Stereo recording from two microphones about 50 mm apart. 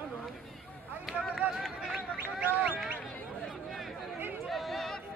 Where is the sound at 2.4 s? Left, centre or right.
Right.